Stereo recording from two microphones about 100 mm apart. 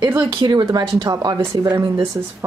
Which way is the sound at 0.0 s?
20° right (ahead or behind).